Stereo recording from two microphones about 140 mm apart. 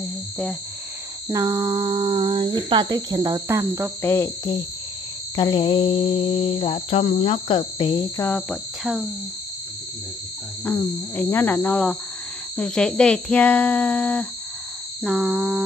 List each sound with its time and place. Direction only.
1.3 s speech: 25° right (ahead or behind)
4.0 s speech: 15° left (ahead or behind)
5.3 s a sound: 30° left (ahead or behind)
8.2 s cricket: 10° left (ahead or behind)
10.6 s speech: 10° left (ahead or behind)
15.0 s cricket: centre (ahead or behind)